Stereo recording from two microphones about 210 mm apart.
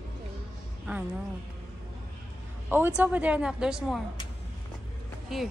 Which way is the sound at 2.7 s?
10° right (ahead or behind).